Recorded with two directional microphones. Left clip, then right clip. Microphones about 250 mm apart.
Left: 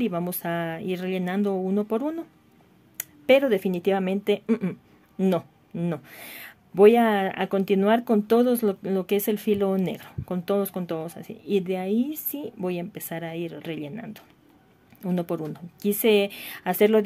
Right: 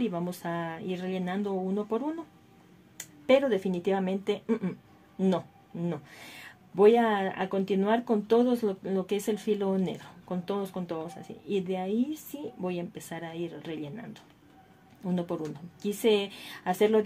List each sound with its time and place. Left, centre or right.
0.0 s speech: left